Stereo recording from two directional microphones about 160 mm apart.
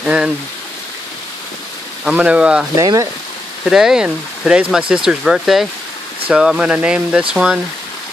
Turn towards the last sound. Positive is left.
turn(degrees=-5)  # may be behind; listen again after turning